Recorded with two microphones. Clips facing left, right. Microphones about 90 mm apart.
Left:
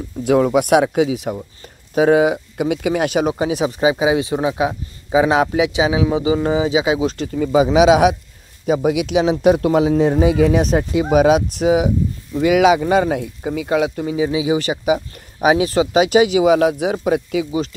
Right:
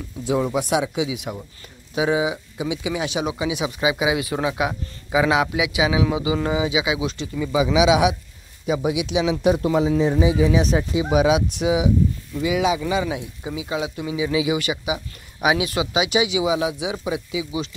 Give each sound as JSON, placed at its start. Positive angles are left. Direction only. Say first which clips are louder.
{"t": 0.2, "sound": "speech", "louder": "left 7 dB", "side_deg": 60}
{"t": 2.0, "sound": "a man's voice", "louder": "left 8 dB", "side_deg": 55}
{"t": 12.4, "sound": "speech", "louder": "left 8 dB", "side_deg": 65}
{"t": 12.8, "sound": "a man's voice", "louder": "left 7 dB", "side_deg": 50}
{"t": 14.0, "sound": "a man's voice", "louder": "left 4 dB", "side_deg": 40}